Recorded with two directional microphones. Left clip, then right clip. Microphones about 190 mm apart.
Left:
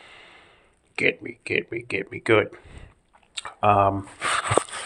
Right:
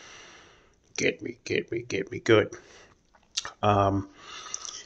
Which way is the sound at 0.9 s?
30° right (ahead or behind).